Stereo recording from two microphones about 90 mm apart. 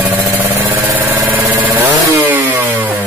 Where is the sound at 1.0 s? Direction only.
30° right (ahead or behind).